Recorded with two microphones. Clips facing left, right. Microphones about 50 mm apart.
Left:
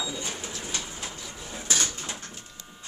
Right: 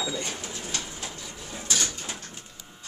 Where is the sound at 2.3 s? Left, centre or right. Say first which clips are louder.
Even; centre.